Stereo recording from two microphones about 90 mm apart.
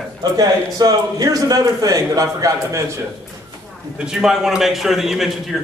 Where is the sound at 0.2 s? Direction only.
45° right (ahead or behind).